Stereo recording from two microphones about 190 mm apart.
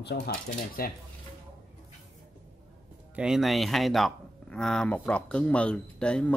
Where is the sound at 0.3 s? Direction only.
50° left (ahead or behind).